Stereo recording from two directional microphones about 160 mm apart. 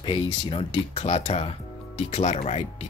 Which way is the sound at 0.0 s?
30° left (ahead or behind).